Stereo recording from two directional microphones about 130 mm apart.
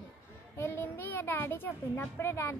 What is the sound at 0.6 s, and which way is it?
A child's voice, 20° left (ahead or behind).